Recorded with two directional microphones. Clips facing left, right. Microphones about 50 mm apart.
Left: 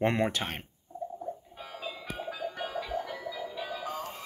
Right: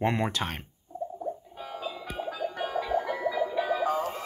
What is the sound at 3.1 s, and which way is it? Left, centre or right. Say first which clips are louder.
Music: right 9 dB; right.